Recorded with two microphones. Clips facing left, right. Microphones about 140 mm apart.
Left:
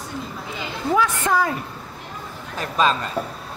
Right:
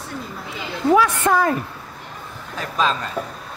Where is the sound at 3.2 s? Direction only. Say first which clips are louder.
Left 1 dB; 5° left (ahead or behind).